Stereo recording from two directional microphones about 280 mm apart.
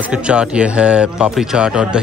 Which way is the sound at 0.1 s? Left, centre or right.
Centre.